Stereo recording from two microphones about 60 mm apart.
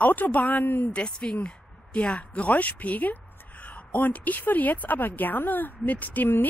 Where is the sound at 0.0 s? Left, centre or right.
Left.